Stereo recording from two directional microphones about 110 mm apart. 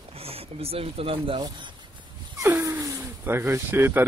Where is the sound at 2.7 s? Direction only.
30° right (ahead or behind).